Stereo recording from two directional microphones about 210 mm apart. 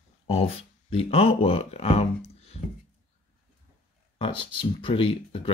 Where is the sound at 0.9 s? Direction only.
25° left (ahead or behind).